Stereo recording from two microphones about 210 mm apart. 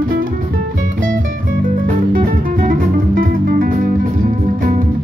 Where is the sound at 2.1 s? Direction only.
40° right (ahead or behind).